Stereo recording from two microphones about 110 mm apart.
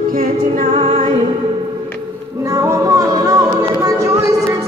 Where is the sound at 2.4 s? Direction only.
30° right (ahead or behind).